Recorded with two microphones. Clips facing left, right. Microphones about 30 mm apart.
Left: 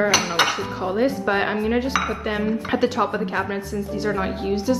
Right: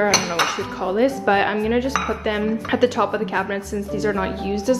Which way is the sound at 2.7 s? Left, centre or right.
Centre.